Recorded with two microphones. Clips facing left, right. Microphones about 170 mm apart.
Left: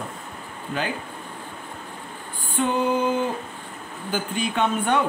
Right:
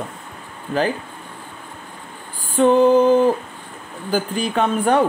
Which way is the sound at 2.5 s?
35° right (ahead or behind).